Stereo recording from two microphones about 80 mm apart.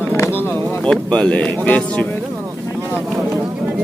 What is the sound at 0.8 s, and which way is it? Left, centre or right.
Speech, centre.